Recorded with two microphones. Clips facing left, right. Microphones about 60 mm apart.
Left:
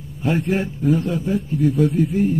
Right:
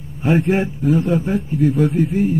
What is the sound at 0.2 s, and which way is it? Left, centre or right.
A man's voice, right.